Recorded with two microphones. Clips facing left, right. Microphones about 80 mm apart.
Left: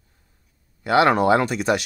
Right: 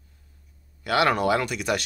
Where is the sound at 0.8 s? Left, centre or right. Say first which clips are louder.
Left 5 dB; left.